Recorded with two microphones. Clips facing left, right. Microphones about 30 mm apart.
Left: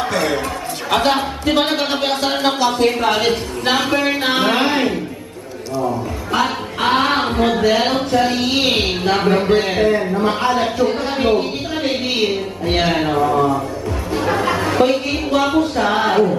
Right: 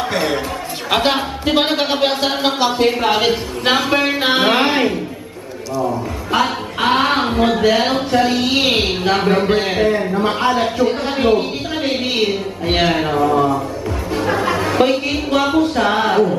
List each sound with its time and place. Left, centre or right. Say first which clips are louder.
0.1 s a man's voice: even; centre
14.1 s music: even; centre
15.4 s a man's voice: right 2 dB; centre